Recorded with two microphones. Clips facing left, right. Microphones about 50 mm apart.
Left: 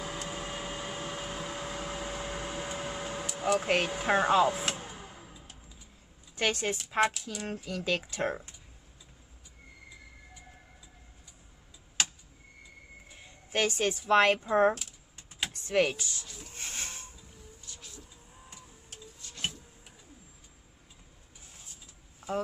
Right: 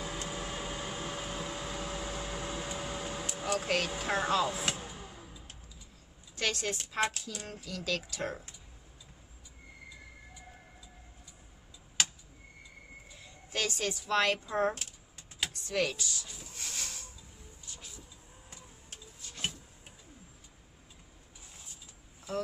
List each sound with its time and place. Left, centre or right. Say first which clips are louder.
0.0 s a sound: left 1 dB; centre
4.8 s vehicle: left 1 dB; left
6.3 s a woman's voice: left 4 dB; left
13.1 s speech: left 5 dB; left
16.4 s a sound: left 3 dB; left
17.7 s vehicle: right 1 dB; centre